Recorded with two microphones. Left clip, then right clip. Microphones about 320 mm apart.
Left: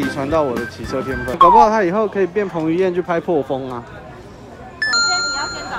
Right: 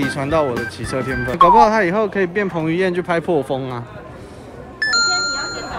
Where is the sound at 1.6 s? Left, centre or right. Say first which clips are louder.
Even; right.